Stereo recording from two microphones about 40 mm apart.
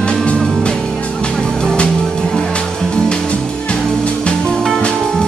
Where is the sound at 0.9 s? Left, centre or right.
Left.